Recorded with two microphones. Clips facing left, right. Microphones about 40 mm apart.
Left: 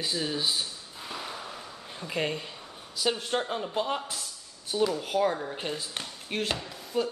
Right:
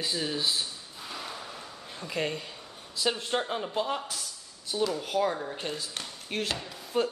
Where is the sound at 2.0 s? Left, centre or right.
Centre.